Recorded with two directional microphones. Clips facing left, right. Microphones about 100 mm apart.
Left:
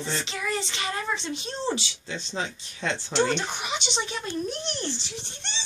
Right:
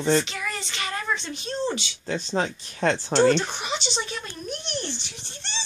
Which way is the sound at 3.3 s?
15° left (ahead or behind).